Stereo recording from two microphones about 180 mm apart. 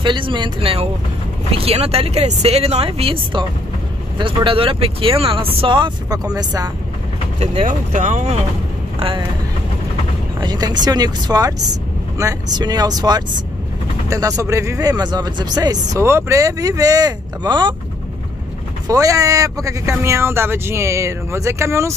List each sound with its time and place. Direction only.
0.0 s speech: 25° right (ahead or behind)
7.6 s speech: 45° right (ahead or behind)
10.4 s speech: 25° right (ahead or behind)
18.9 s speech: 20° right (ahead or behind)